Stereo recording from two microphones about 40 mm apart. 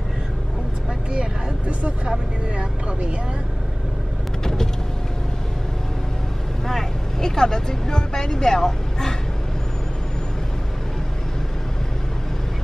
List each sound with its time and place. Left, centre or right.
1.7 s speech: right
2.0 s speech: right
4.4 s vehicle: centre
6.7 s speech: centre